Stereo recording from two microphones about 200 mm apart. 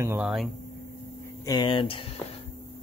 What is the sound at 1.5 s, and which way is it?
Speech, 25° left (ahead or behind).